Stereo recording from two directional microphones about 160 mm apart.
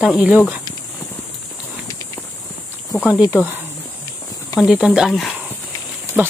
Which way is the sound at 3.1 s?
20° left (ahead or behind).